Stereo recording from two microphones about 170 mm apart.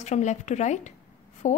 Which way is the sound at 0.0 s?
45° left (ahead or behind).